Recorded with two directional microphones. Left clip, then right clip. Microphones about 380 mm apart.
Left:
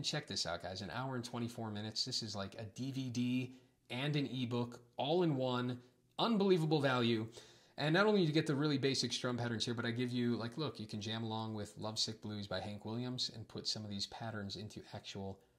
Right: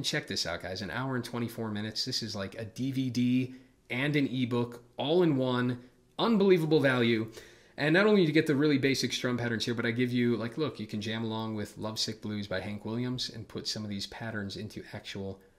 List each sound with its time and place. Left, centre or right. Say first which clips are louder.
0.0 s speech: right 8 dB; left